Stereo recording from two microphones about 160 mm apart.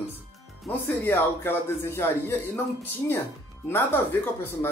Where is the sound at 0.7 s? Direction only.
10° left (ahead or behind).